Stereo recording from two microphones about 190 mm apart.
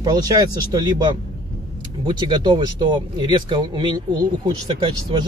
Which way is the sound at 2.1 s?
25° right (ahead or behind).